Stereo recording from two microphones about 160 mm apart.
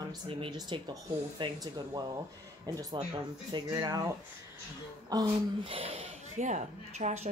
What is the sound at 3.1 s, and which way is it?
Speech, 25° right (ahead or behind).